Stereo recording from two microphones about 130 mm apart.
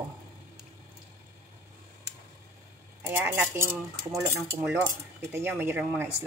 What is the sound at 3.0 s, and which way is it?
Speech, 15° right (ahead or behind).